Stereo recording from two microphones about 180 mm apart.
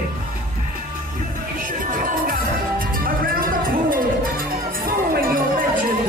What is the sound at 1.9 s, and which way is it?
Music, 50° right (ahead or behind).